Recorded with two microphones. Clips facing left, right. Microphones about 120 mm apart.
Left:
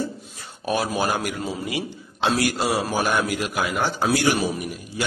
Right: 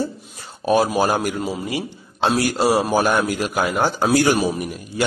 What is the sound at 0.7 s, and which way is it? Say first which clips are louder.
Speech: right 6 dB; 30° right (ahead or behind).